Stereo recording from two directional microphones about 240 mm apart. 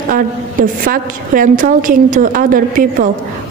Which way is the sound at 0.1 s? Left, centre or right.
Right.